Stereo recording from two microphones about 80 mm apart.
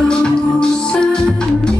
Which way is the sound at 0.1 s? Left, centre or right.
Centre.